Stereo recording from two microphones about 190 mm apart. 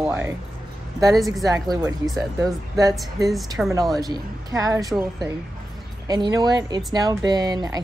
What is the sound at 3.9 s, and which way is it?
Speech, 20° right (ahead or behind).